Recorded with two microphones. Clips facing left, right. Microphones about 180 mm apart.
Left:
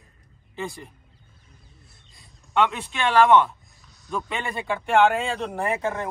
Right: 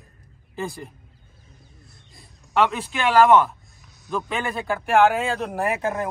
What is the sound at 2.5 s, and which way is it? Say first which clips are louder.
Speech: right 1 dB; 5° right (ahead or behind).